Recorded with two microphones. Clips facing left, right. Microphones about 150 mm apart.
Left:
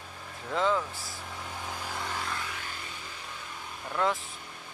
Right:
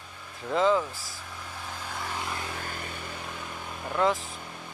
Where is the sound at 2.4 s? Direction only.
40° right (ahead or behind).